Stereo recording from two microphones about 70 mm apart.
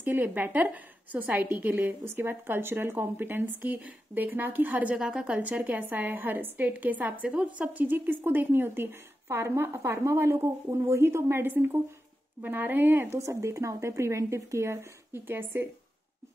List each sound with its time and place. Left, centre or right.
0.0 s speech: right
0.3 s speech: right
4.9 s speech: centre; by 13.2 s right
13.2 s speech: right